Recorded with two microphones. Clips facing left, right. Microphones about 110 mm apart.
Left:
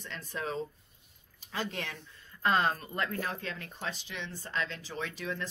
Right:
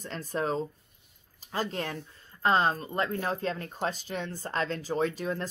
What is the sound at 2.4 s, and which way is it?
Speech, 25° right (ahead or behind).